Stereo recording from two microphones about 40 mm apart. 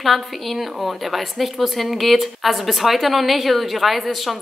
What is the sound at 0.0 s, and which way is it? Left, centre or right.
A woman's voice, centre.